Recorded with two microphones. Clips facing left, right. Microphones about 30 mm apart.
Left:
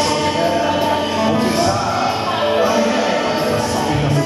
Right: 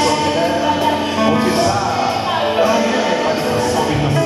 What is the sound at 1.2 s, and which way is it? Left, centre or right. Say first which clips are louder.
Music: right 3 dB; centre.